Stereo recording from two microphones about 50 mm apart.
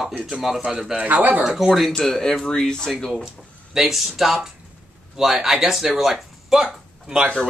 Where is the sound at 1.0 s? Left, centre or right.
Right.